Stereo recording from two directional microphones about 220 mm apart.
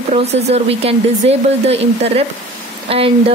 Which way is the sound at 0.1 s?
30° right (ahead or behind).